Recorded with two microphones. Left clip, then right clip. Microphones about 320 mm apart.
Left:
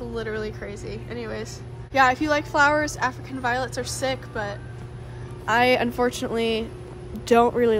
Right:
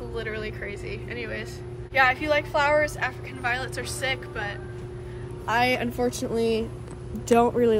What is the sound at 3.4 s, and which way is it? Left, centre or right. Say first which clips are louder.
A woman's voice: left 3 dB; centre.